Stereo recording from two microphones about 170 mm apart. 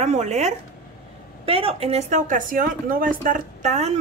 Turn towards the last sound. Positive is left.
turn(degrees=-40)  # may be behind; listen again after turning